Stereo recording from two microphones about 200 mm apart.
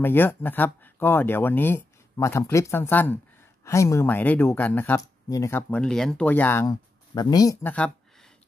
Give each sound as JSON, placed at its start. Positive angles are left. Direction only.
{"t": 0.0, "sound": "speech", "side_deg": 10}